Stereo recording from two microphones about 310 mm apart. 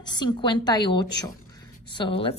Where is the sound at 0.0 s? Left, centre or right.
Centre.